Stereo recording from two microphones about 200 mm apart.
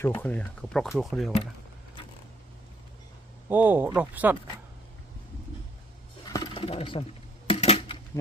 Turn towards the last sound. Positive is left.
turn(degrees=30)  # may be behind; listen again after turning